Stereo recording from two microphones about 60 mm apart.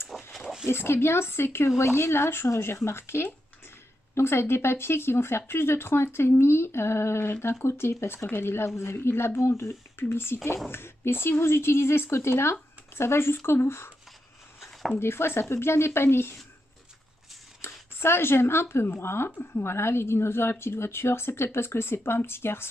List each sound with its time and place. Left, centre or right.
0.3 s a sound: centre
0.7 s a woman's voice: left
8.3 s a woman's voice: left
14.6 s a sound: centre
15.0 s a woman's voice: left
17.6 s a woman's voice: left